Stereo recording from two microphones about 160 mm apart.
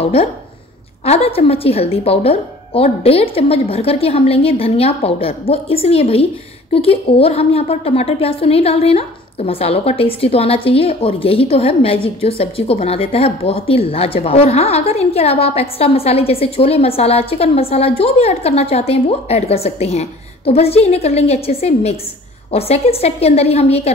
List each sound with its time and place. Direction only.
0.0 s a woman's voice: 40° left (ahead or behind)